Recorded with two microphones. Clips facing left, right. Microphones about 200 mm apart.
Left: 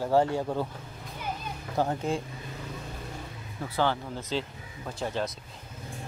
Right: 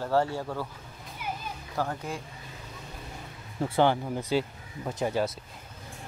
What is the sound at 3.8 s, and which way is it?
Speech, 15° right (ahead or behind).